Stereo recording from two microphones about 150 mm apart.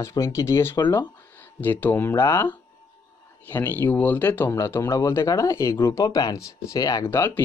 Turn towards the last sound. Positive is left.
turn(degrees=15)  # may be behind; listen again after turning